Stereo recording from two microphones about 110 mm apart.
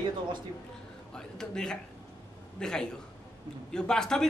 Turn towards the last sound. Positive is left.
turn(degrees=5)  # may be behind; listen again after turning